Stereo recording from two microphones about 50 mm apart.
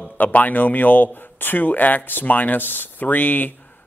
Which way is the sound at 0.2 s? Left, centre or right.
Left.